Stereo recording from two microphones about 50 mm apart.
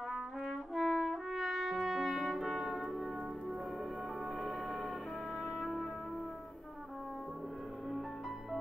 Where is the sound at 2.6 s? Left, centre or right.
Centre.